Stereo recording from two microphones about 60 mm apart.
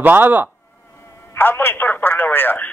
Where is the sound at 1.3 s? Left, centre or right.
Left.